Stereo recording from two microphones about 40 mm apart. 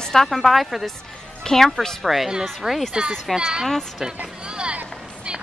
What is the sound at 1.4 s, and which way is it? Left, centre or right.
Speech, centre.